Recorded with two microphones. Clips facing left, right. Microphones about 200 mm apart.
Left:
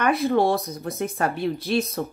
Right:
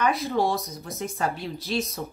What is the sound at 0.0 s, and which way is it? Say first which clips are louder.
A woman's voice: left 4 dB; 55° left (ahead or behind).